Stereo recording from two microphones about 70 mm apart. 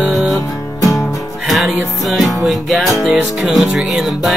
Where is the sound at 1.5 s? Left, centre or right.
Centre.